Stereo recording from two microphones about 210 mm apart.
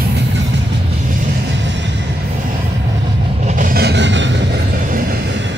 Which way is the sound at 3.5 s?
40° right (ahead or behind).